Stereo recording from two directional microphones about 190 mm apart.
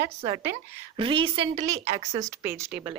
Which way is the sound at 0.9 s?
25° right (ahead or behind).